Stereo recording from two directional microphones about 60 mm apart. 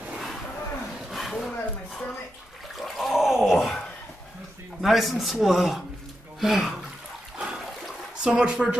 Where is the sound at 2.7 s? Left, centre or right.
Centre.